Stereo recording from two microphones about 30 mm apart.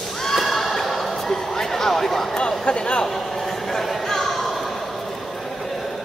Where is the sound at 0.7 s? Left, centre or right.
Centre.